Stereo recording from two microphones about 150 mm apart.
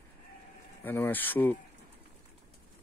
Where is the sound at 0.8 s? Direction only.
10° left (ahead or behind).